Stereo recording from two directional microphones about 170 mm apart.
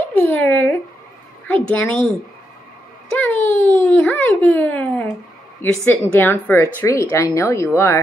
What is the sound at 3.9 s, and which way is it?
A woman's voice, 10° left (ahead or behind).